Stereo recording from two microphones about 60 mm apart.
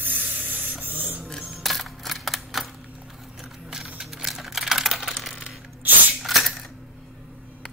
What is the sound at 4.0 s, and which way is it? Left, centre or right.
Typing, centre.